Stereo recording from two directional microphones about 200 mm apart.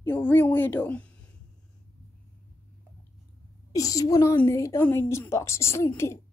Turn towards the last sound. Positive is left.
turn(degrees=15)  # may be behind; listen again after turning